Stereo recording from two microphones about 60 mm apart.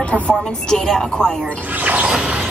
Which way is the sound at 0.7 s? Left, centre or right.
Centre.